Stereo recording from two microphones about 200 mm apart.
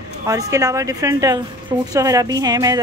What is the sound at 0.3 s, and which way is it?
A woman's voice, 15° right (ahead or behind).